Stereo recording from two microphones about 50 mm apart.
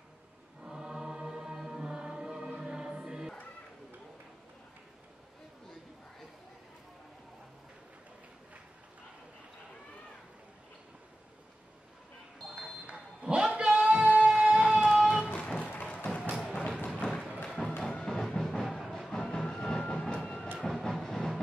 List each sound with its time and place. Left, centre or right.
0.7 s choir: centre
2.6 s music: centre
13.2 s a sound: centre
14.6 s a sound: centre
15.3 s music: centre
15.6 s music: left
17.5 s music: centre
19.9 s train: left
20.6 s train: centre